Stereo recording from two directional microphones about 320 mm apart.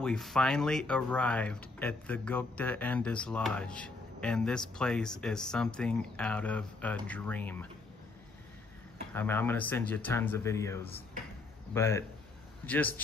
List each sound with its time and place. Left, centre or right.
0.0 s speech: centre
9.1 s speech: centre